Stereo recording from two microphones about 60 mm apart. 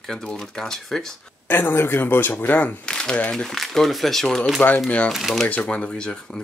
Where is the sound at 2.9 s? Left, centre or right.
Centre.